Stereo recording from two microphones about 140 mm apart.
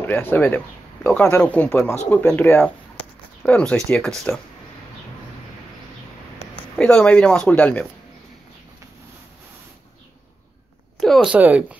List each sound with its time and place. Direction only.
0.0 s speech: 15° left (ahead or behind)
6.5 s speech: 10° left (ahead or behind)
11.0 s a woman's voice: centre (ahead or behind)
11.3 s speech: 10° right (ahead or behind)